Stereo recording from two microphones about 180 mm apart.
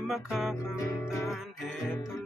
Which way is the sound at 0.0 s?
Centre (ahead or behind).